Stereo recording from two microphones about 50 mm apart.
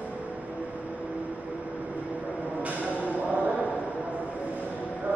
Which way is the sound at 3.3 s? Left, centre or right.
Right.